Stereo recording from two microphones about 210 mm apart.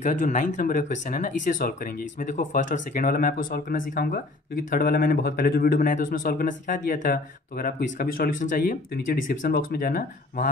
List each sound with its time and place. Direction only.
0.0 s speech: 35° left (ahead or behind)